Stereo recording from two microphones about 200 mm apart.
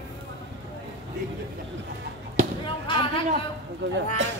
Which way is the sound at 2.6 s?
25° left (ahead or behind).